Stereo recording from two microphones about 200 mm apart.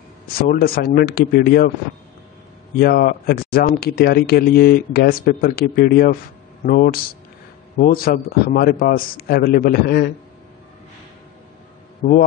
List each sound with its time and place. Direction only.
0.4 s speech: 50° left (ahead or behind)
2.8 s speech: 50° left (ahead or behind)
12.0 s a man's voice: 40° left (ahead or behind)